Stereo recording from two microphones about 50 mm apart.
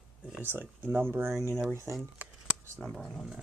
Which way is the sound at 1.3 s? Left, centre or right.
Right.